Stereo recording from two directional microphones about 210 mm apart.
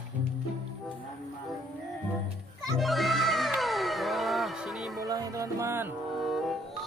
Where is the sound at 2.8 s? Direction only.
Centre (ahead or behind).